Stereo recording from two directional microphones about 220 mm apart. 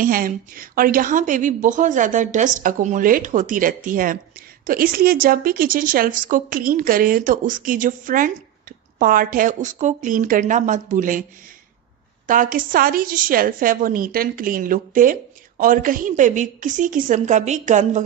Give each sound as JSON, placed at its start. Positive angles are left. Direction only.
{"t": 0.0, "sound": "a woman's voice", "side_deg": -40}
{"t": 12.3, "sound": "a woman's voice", "side_deg": -40}